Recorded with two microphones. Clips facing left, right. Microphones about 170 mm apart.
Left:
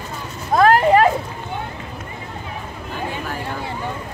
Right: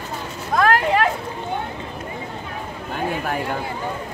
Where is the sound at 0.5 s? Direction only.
35° left (ahead or behind).